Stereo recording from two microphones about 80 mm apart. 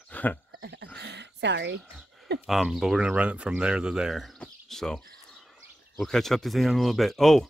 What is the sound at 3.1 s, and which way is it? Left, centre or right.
Speech, centre.